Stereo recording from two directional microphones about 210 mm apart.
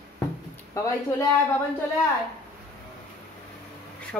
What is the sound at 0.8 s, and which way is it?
Speech, 15° left (ahead or behind).